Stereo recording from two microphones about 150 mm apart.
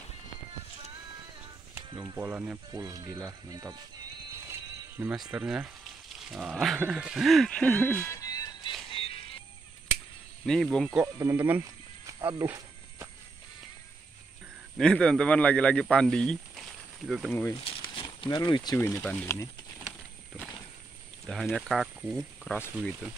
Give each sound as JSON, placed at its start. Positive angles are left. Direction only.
{"t": 2.1, "sound": "speech", "side_deg": -10}
{"t": 2.7, "sound": "speech", "side_deg": -25}
{"t": 4.5, "sound": "music", "side_deg": -15}
{"t": 5.3, "sound": "speech", "side_deg": -10}
{"t": 8.9, "sound": "music", "side_deg": 40}
{"t": 10.4, "sound": "speech", "side_deg": 5}
{"t": 11.1, "sound": "speech", "side_deg": -15}
{"t": 12.2, "sound": "speech", "side_deg": -25}
{"t": 14.8, "sound": "speech", "side_deg": 5}
{"t": 17.8, "sound": "a sound", "side_deg": 35}
{"t": 18.8, "sound": "speech", "side_deg": 20}
{"t": 21.3, "sound": "speech", "side_deg": 0}